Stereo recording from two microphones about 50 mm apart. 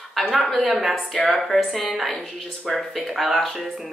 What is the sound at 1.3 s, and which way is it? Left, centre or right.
A woman's voice, centre.